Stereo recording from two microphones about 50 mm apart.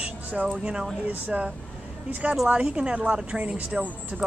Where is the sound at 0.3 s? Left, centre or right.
Right.